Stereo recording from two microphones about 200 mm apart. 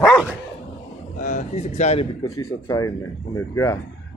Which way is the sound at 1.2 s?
35° left (ahead or behind).